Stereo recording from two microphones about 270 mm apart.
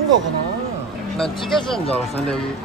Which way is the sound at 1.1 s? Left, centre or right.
Centre.